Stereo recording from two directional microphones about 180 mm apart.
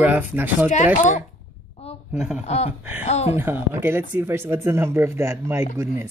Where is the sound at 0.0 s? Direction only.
10° right (ahead or behind).